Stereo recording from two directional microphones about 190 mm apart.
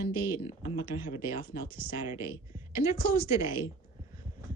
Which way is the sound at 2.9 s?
50° left (ahead or behind).